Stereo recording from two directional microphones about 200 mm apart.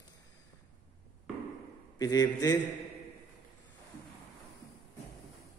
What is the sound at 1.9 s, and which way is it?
Speech, 20° left (ahead or behind).